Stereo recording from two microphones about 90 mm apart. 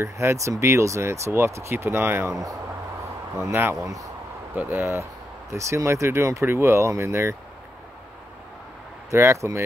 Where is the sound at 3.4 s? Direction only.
25° right (ahead or behind).